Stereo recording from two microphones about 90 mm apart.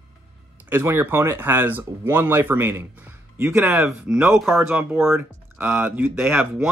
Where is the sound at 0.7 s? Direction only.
25° right (ahead or behind).